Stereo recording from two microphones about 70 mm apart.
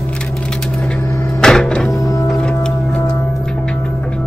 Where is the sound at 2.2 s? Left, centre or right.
Centre.